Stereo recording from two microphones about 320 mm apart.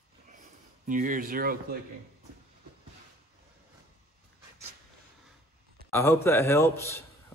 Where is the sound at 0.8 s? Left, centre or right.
Right.